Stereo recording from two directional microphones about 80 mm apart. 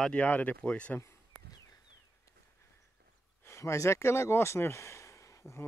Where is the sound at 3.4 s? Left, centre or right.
Left.